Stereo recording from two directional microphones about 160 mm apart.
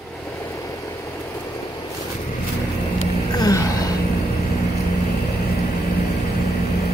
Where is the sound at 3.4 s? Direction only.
20° left (ahead or behind).